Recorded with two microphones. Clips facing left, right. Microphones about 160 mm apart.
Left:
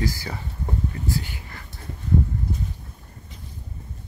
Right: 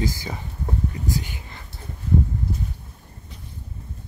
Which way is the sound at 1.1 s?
20° right (ahead or behind).